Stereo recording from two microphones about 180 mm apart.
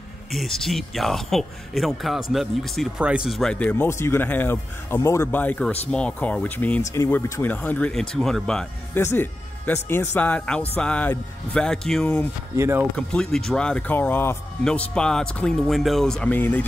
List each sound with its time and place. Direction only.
0.3 s speech: centre (ahead or behind)
12.5 s speech: 15° right (ahead or behind)
12.9 s speech: 5° left (ahead or behind)